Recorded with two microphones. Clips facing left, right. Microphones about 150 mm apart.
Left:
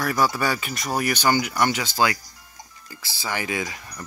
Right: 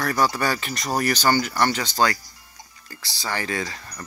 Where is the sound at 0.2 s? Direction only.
5° left (ahead or behind).